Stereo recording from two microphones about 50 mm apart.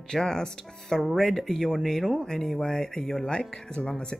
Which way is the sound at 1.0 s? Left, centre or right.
Centre.